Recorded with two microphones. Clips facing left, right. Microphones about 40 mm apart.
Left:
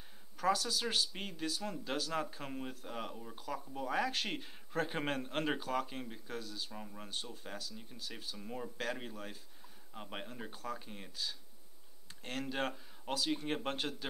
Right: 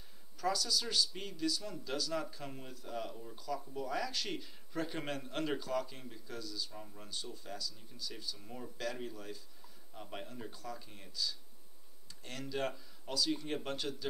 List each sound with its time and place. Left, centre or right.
0.4 s speech: left
6.7 s speech: left
8.4 s speech: left
9.1 s speech: left